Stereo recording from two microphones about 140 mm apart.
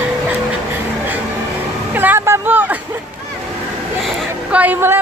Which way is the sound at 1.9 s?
15° right (ahead or behind).